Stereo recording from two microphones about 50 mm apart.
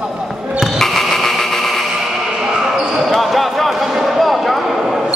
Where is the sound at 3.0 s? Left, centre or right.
Centre.